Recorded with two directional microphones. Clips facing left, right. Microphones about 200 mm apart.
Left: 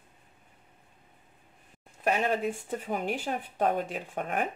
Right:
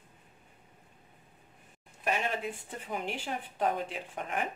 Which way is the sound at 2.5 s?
45° left (ahead or behind).